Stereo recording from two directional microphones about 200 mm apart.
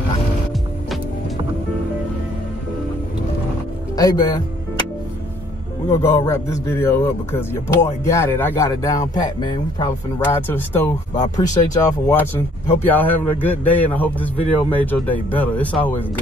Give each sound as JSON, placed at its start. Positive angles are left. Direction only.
{"t": 3.9, "sound": "music", "side_deg": 20}
{"t": 5.9, "sound": "speech", "side_deg": 15}